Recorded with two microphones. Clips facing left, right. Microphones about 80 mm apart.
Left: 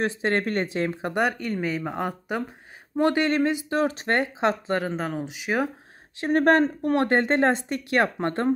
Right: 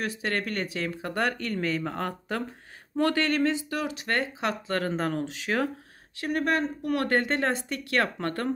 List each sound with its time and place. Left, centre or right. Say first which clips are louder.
0.0 s speech: left 6 dB; left
3.8 s speech: left 8 dB; left
4.1 s speech: left 2 dB; left
4.8 s speech: even; centre
6.2 s speech: left 7 dB; left
7.0 s speech: left 5 dB; left